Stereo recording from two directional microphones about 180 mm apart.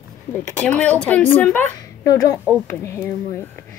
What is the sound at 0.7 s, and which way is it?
Speech, 5° left (ahead or behind).